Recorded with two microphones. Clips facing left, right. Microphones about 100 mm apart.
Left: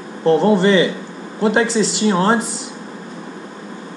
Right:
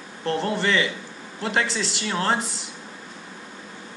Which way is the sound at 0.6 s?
20° left (ahead or behind).